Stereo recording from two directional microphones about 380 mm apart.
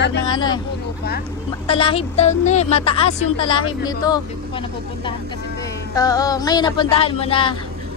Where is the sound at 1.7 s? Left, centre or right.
Centre.